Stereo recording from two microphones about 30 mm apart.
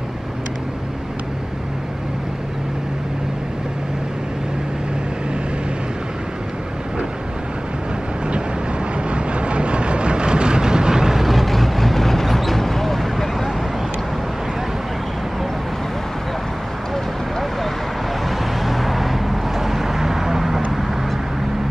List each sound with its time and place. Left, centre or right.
9.1 s vehicle: right
11.1 s vehicle: centre
18.6 s vehicle: centre